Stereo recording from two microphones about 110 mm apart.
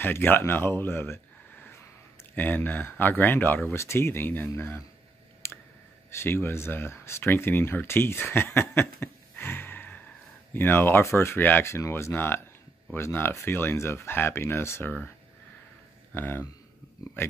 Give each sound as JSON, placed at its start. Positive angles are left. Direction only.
{"t": 0.0, "sound": "speech", "side_deg": 20}
{"t": 5.4, "sound": "clicking", "side_deg": 25}
{"t": 6.1, "sound": "speech", "side_deg": 20}
{"t": 16.1, "sound": "speech", "side_deg": 20}